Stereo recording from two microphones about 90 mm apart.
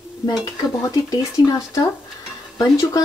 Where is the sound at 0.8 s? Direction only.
40° left (ahead or behind).